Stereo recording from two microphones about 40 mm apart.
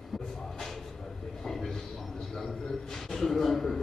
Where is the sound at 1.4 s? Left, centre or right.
Centre.